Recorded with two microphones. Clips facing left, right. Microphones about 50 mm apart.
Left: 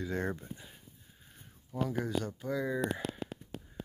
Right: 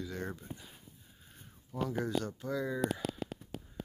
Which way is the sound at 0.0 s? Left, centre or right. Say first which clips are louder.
Left 5 dB; left.